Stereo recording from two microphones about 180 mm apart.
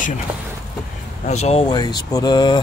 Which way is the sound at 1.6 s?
20° left (ahead or behind).